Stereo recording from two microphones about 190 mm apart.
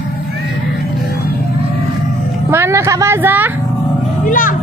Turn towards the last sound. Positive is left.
turn(degrees=45)  # may be behind; listen again after turning